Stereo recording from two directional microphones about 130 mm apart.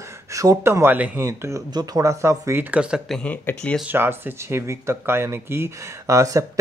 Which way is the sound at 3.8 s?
15° right (ahead or behind).